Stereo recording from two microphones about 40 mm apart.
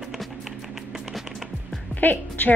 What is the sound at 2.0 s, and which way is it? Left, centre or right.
Music, left.